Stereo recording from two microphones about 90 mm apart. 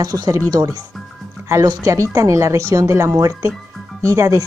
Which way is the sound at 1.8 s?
35° right (ahead or behind).